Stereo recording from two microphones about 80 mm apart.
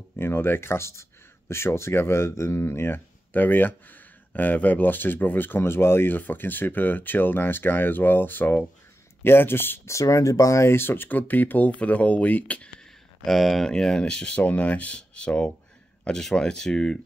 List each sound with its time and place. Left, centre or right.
0.2 s speech: left
9.9 s speech: left; by 12.7 s centre
13.2 s speech: centre